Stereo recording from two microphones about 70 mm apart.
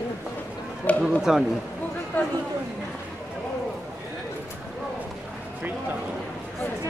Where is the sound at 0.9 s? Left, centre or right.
Left.